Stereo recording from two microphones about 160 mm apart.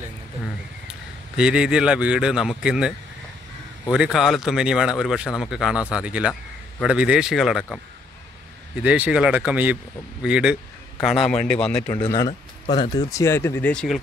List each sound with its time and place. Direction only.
0.8 s speech: 5° right (ahead or behind)
3.9 s speech: centre (ahead or behind)
8.8 s a man's voice: 10° right (ahead or behind)
11.9 s speech: 25° left (ahead or behind); by 14.0 s 5° left (ahead or behind)